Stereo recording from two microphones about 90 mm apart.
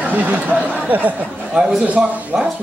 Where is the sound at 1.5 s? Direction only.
5° right (ahead or behind).